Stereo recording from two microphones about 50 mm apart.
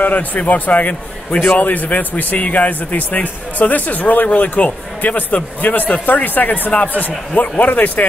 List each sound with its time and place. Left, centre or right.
0.0 s a man's voice: left